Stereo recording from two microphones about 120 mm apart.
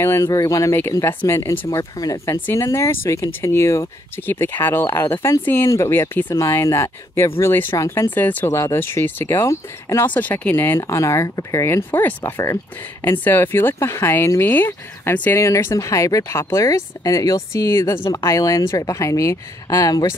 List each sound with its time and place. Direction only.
0.0 s speech: 25° left (ahead or behind)